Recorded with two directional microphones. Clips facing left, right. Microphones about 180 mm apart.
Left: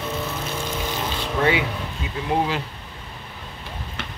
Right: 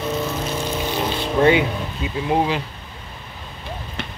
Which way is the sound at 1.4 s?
30° right (ahead or behind).